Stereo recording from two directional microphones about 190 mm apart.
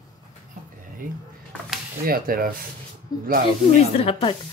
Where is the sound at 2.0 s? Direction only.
50° right (ahead or behind).